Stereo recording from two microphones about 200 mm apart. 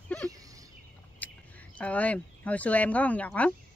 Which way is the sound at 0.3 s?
15° right (ahead or behind).